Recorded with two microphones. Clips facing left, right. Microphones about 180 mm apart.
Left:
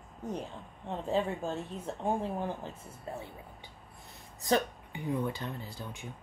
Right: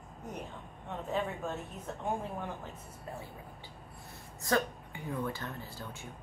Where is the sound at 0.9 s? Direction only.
30° left (ahead or behind).